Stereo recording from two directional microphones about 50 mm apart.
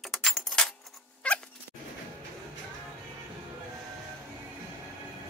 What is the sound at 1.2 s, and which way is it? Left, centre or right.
Cat, left.